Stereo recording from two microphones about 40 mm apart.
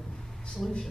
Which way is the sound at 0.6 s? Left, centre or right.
Centre.